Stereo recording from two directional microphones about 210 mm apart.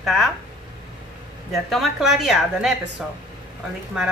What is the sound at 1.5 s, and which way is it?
Speech, centre (ahead or behind).